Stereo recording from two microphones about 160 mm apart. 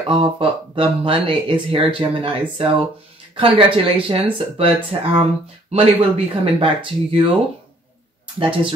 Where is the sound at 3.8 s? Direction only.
35° right (ahead or behind).